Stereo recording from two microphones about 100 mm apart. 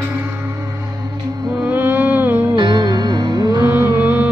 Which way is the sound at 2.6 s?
45° right (ahead or behind).